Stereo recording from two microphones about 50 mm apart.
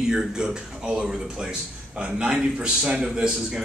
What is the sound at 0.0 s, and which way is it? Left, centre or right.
A man's voice, centre.